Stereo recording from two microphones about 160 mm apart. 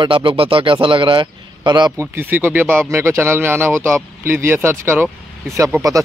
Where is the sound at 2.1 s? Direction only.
10° right (ahead or behind).